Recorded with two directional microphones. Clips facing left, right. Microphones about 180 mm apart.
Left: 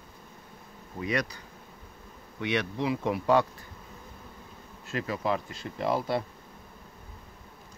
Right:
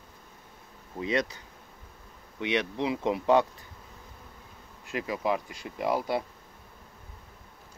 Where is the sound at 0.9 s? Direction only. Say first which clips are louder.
Right 2 dB; 25° right (ahead or behind).